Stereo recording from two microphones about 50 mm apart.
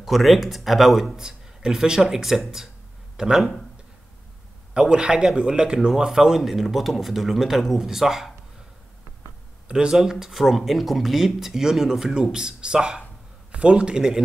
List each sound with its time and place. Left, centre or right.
0.0 s a man's voice: centre
3.3 s speech: centre
4.7 s a man's voice: centre
9.7 s a man's voice: centre